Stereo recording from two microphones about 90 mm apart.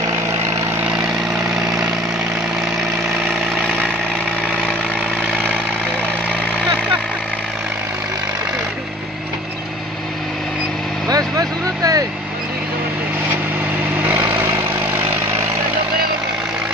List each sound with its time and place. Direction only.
11.1 s vehicle: 40° right (ahead or behind)
14.4 s vehicle: 25° right (ahead or behind)